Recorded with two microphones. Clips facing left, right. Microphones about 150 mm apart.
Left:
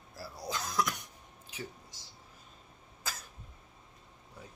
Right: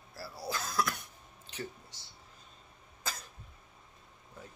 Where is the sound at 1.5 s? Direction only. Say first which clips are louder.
Right 2 dB; 10° left (ahead or behind).